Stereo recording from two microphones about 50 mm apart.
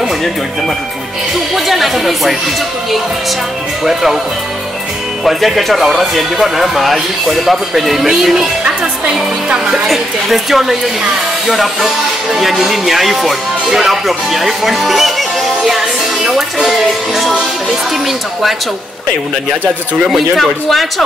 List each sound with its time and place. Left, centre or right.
1.5 s speech: centre
3.8 s speech: centre
5.2 s speech: centre
9.8 s speech: centre
20.1 s speech: centre